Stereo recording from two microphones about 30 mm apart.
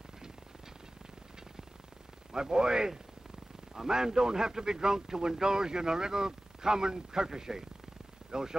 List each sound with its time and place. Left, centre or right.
2.3 s a man's voice: right